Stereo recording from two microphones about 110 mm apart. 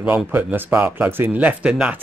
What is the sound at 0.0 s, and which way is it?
Speech, 15° right (ahead or behind).